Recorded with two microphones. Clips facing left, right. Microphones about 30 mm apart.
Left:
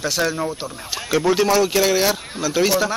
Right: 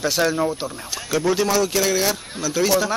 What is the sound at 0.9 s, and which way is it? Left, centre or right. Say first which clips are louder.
Speech: left 3 dB; centre.